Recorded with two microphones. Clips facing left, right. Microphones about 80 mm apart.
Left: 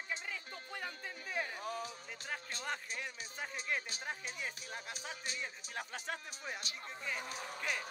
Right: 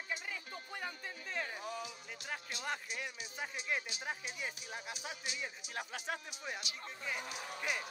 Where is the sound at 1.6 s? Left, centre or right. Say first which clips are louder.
Left 1 dB; left.